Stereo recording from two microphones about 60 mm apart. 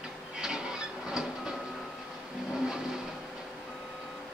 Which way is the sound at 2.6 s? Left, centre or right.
Centre.